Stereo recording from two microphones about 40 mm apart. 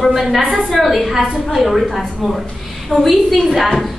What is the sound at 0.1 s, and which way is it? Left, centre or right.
A woman's voice, centre.